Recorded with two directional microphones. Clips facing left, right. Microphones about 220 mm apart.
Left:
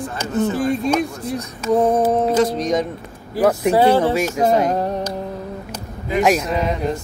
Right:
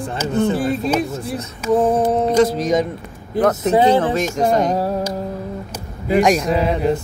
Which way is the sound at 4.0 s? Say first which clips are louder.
Left 1 dB; 10° left (ahead or behind).